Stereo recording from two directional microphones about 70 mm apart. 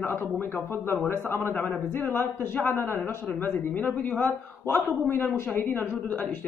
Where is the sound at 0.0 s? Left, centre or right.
Left.